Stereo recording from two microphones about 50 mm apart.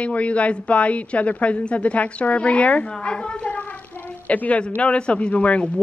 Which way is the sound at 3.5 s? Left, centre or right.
Left.